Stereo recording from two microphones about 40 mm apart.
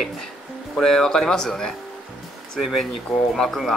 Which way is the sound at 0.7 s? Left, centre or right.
Centre.